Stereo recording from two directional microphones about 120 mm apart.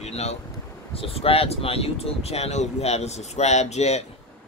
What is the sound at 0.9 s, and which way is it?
Speech, 55° left (ahead or behind).